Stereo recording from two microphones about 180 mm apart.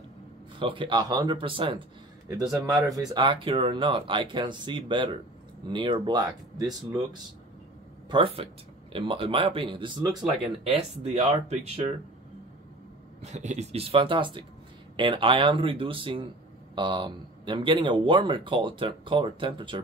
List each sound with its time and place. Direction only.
0.6 s speech: 30° right (ahead or behind)
2.6 s speech: 20° right (ahead or behind); by 11.9 s 35° right (ahead or behind)
13.2 s speech: 40° right (ahead or behind)